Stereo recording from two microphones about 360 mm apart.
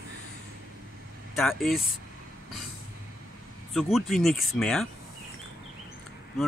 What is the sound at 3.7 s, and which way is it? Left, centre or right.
Speech, centre.